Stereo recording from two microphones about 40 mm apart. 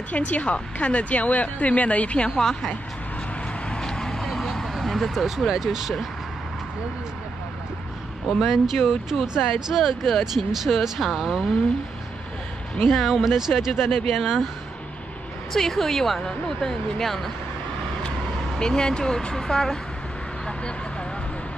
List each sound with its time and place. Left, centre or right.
0.1 s speech: left
3.8 s vehicle: centre
4.6 s a sound: centre
5.5 s speech: centre
8.3 s speech: centre
12.8 s speech: centre
15.5 s speech: centre
18.6 s speech: centre